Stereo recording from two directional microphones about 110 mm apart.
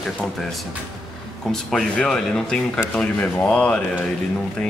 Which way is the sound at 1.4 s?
5° left (ahead or behind).